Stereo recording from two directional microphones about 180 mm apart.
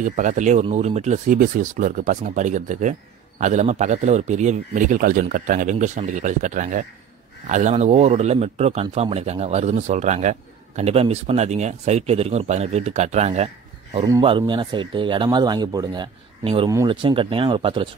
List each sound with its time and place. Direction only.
0.0 s speech: 45° right (ahead or behind)
14.2 s speech: 25° right (ahead or behind)